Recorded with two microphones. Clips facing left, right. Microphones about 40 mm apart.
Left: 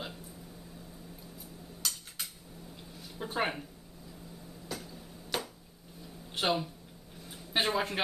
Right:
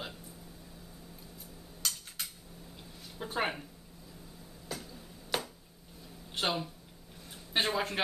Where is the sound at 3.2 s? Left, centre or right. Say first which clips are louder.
Left 1 dB; centre.